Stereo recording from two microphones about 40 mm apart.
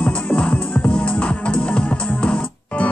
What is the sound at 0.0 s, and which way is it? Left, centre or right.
Music, left.